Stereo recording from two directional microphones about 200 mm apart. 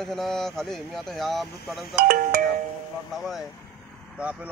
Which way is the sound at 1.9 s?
50° right (ahead or behind).